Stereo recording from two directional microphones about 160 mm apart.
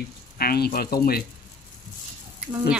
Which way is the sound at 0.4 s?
70° left (ahead or behind).